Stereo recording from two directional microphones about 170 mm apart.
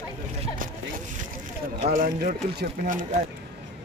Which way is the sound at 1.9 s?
60° right (ahead or behind).